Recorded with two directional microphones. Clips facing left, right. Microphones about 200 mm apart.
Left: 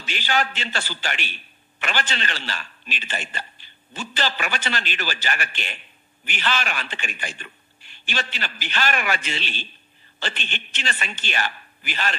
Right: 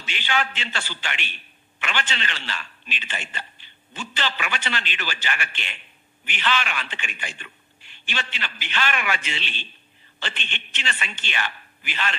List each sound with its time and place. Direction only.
0.0 s a man's voice: 40° left (ahead or behind)